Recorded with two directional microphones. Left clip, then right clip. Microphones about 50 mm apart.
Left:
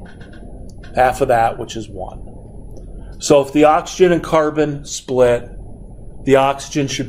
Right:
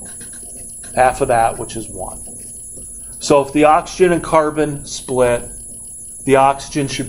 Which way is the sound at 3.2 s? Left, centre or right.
Left.